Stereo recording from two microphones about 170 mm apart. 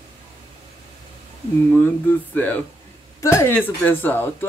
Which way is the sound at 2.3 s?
10° left (ahead or behind).